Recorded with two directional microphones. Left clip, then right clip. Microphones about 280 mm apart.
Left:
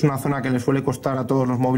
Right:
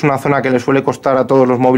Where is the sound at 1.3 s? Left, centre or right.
Centre.